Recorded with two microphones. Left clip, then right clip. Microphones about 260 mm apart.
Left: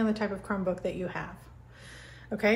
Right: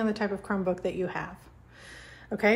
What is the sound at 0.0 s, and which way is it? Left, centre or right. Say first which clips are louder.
A woman's voice: right 1 dB; right.